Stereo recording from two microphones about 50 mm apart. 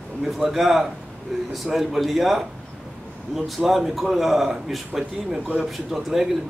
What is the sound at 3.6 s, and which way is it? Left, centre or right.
A man's voice, centre.